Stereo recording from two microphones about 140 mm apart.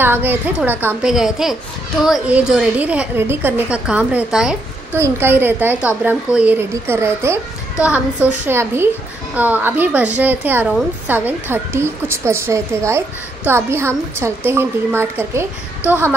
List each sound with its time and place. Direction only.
0.0 s a woman's voice: 15° right (ahead or behind)
1.1 s a woman's voice: centre (ahead or behind)
4.9 s a woman's voice: 15° right (ahead or behind)